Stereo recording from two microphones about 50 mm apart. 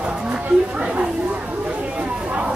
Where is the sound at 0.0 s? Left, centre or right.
Centre.